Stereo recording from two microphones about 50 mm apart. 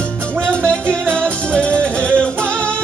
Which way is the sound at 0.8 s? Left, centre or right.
Right.